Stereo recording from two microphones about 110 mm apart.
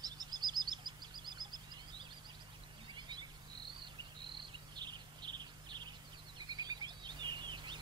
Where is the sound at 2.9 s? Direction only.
45° right (ahead or behind).